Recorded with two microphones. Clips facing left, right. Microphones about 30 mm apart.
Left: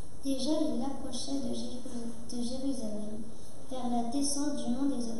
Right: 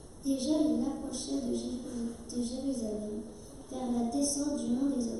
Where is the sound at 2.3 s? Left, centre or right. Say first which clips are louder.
Left 1 dB; left.